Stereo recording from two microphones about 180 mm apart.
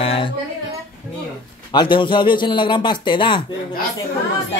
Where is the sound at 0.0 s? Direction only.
30° left (ahead or behind).